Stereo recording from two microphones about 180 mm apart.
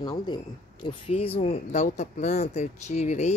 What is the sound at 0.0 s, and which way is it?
Speech, 25° left (ahead or behind).